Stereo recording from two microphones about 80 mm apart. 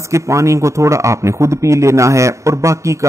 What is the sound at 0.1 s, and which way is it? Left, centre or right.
A man's voice, right.